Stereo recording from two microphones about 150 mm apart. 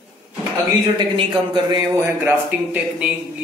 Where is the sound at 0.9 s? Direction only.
30° right (ahead or behind).